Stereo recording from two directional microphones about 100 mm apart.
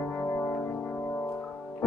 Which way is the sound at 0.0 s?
20° left (ahead or behind).